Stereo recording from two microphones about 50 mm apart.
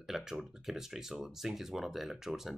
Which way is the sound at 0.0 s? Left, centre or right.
Centre.